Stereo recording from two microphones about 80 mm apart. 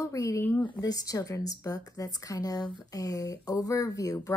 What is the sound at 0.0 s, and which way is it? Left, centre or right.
Speech, left.